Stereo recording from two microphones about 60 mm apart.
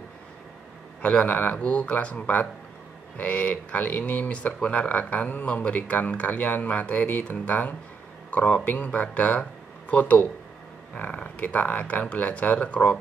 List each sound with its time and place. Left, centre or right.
1.0 s speech: left